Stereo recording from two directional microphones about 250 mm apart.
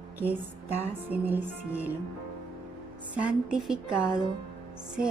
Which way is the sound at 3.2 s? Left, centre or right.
Centre.